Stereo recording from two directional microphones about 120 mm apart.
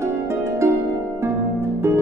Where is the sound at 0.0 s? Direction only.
25° right (ahead or behind).